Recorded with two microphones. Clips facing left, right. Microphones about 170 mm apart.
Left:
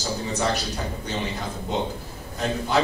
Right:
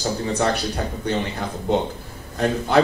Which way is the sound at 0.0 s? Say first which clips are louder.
Right 4 dB; 55° right (ahead or behind).